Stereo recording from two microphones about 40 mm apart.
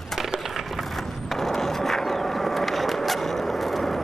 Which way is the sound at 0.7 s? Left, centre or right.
Centre.